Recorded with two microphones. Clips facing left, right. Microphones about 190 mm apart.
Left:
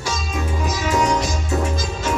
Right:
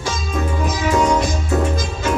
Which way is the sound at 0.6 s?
55° right (ahead or behind).